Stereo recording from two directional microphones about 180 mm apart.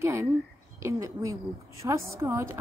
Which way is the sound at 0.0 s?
15° right (ahead or behind).